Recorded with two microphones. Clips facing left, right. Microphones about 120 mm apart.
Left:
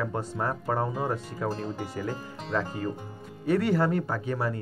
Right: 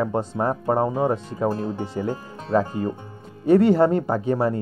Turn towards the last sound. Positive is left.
turn(degrees=-30)  # may be behind; listen again after turning